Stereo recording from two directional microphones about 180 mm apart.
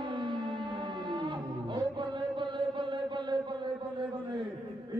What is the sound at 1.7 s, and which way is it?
Chant, 25° right (ahead or behind).